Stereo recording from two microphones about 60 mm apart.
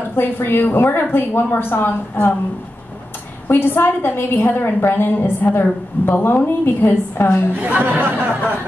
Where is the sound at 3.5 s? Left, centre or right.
Left.